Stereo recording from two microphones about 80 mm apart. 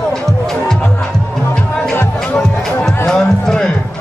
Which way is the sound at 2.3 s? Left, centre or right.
Centre.